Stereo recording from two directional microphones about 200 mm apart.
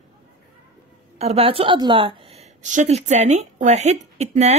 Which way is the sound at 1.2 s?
30° right (ahead or behind).